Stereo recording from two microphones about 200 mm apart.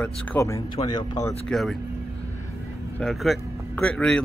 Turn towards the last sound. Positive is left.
turn(degrees=5)  # may be behind; listen again after turning